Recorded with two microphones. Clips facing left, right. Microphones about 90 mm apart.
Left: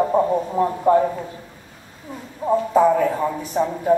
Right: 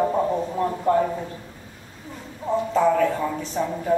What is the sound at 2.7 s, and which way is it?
Speech, 15° left (ahead or behind).